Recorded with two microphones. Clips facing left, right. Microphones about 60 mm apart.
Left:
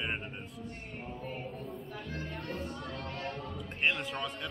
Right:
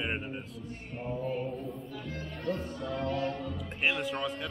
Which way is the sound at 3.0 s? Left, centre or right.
Left.